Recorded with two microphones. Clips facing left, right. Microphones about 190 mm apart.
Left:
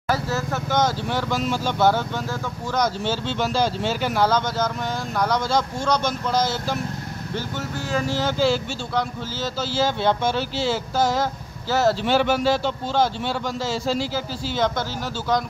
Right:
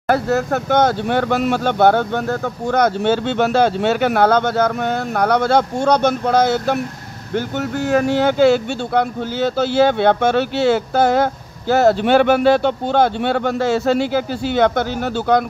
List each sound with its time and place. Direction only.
0.1 s speech: 60° right (ahead or behind)